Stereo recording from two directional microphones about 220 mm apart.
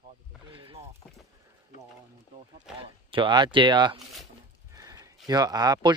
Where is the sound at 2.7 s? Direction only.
25° right (ahead or behind).